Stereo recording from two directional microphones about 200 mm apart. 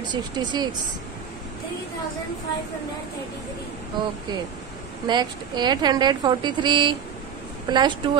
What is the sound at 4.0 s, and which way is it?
A woman's voice, 20° right (ahead or behind).